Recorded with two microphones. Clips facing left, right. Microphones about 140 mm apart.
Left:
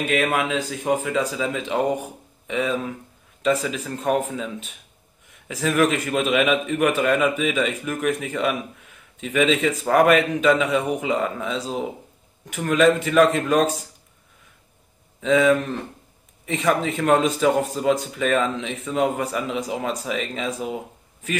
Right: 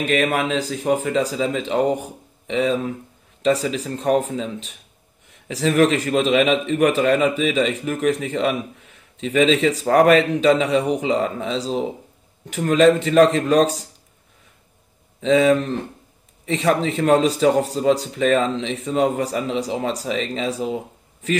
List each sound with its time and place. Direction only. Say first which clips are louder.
0.1 s a man's voice: right 2 dB; 35° right (ahead or behind)
15.1 s a man's voice: right 2 dB; 35° right (ahead or behind)